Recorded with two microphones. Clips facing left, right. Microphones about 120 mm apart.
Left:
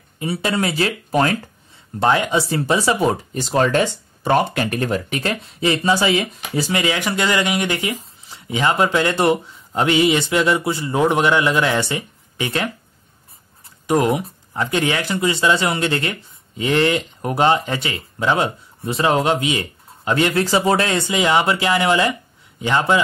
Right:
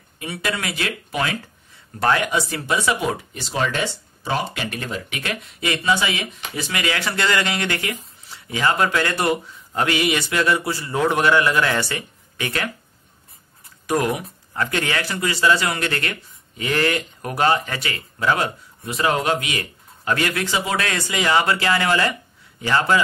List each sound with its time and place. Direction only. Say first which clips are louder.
0.2 s speech: left 6 dB; 30° left (ahead or behind)
2.0 s speech: left 3 dB; 20° left (ahead or behind)
13.8 s speech: left 4 dB; 25° left (ahead or behind)
20.4 s speech: left 6 dB; 40° left (ahead or behind)
20.8 s speech: left 4 dB; 25° left (ahead or behind)